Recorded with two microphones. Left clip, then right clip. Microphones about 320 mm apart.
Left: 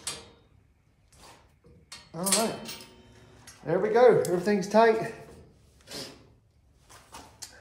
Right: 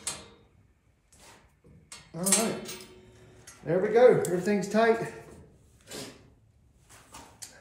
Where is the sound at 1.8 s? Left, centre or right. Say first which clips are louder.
Left 1 dB; centre.